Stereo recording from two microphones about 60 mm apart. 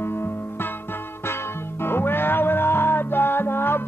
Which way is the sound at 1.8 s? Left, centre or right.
Left.